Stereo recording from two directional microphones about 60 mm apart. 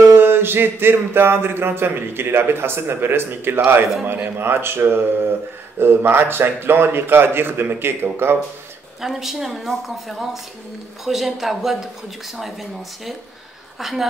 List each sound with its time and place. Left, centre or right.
0.1 s speech: right
9.0 s speech: centre